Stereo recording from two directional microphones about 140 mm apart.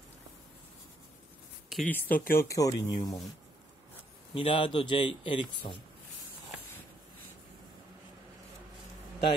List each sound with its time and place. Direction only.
1.9 s speech: 15° left (ahead or behind)
2.3 s speech: 25° left (ahead or behind)
4.3 s a man's voice: 40° left (ahead or behind)